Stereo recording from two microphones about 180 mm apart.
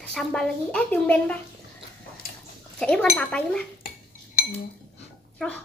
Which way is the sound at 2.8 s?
5° left (ahead or behind).